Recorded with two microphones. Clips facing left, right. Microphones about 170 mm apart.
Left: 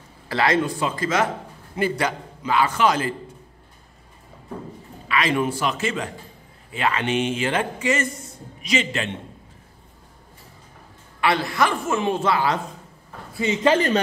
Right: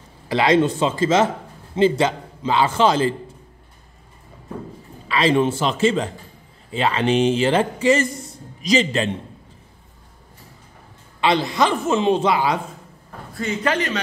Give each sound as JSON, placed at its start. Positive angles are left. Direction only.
{"t": 0.3, "sound": "a woman's voice", "side_deg": -20}
{"t": 5.0, "sound": "a woman's voice", "side_deg": -30}
{"t": 11.1, "sound": "a woman's voice", "side_deg": -20}
{"t": 13.4, "sound": "a man's voice", "side_deg": 20}